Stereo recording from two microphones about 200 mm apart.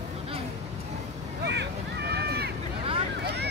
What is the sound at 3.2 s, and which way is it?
Vehicle, 55° right (ahead or behind).